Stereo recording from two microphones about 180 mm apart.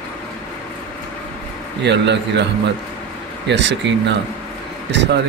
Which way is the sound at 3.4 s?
80° right.